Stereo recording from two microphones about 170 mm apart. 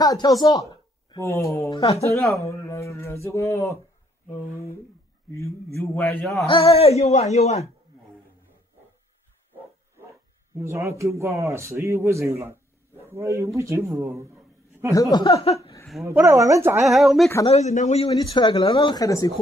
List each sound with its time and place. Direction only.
0.0 s speech: 20° left (ahead or behind)
6.5 s speech: 35° left (ahead or behind)
10.5 s a man's voice: 15° right (ahead or behind)
14.9 s speech: 20° left (ahead or behind)
15.4 s speech: 35° left (ahead or behind)
16.1 s a man's voice: 15° right (ahead or behind)
16.8 s speech: centre (ahead or behind)
17.5 s speech: 40° left (ahead or behind)
18.1 s speech: 30° left (ahead or behind)